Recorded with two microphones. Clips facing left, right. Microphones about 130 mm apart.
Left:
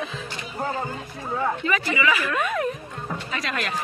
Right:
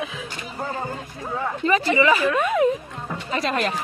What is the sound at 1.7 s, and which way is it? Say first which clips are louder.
Speech: right 9 dB; 30° right (ahead or behind).